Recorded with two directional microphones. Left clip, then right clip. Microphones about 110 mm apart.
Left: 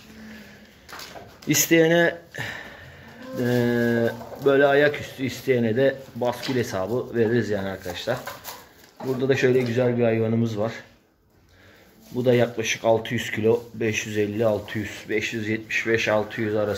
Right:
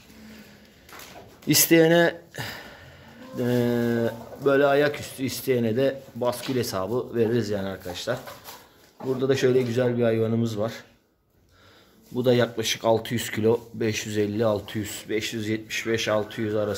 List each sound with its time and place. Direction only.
1.5 s speech: 60° right (ahead or behind)
2.3 s a sound: 30° right (ahead or behind)
3.4 s speech: 30° right (ahead or behind)
9.2 s speech: 30° right (ahead or behind)
12.2 s speech: 55° right (ahead or behind)
14.8 s speech: 30° right (ahead or behind)